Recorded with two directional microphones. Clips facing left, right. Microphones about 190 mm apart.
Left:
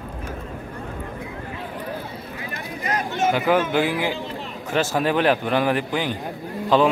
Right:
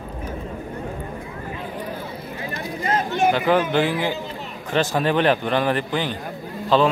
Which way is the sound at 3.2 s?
5° left (ahead or behind).